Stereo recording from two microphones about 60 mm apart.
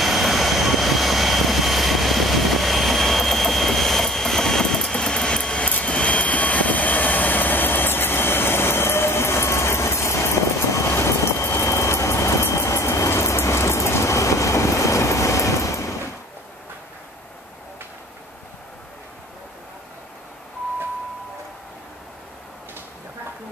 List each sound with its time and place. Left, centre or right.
0.0 s vehicle: centre; by 15.9 s left